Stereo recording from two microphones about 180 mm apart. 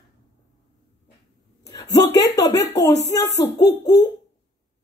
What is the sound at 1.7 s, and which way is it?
A woman's voice, 20° left (ahead or behind).